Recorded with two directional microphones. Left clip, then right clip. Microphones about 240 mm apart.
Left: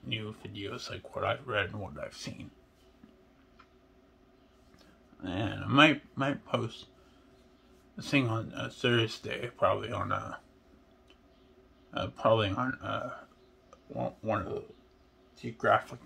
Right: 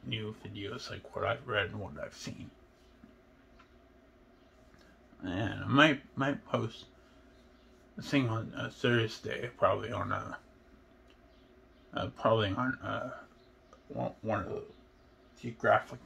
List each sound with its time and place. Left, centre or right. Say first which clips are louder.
0.1 s speech: left 2 dB; centre
5.2 s speech: left 1 dB; centre
8.0 s speech: left 2 dB; centre
11.9 s speech: left 2 dB; centre